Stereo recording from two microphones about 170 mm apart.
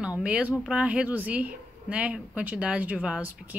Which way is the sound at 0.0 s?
5° right (ahead or behind).